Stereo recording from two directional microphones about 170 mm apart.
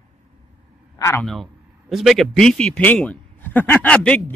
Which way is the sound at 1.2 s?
Centre (ahead or behind).